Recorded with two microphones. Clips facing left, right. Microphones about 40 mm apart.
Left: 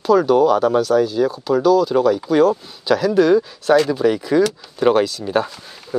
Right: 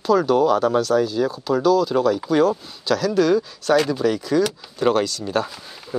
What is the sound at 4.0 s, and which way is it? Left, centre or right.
Speech, centre.